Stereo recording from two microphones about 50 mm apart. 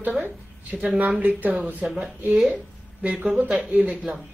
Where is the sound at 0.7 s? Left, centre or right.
Centre.